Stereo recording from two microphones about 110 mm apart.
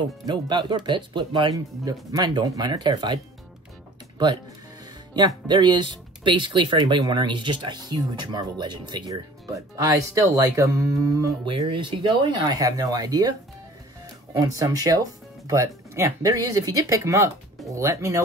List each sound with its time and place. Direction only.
0.3 s speech: 40° right (ahead or behind)
1.9 s speech: 35° right (ahead or behind)
5.1 s speech: 40° right (ahead or behind)
11.4 s speech: 50° right (ahead or behind)
14.4 s speech: 35° right (ahead or behind)